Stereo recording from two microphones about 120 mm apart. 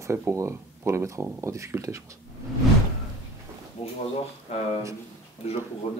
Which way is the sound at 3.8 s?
55° left (ahead or behind).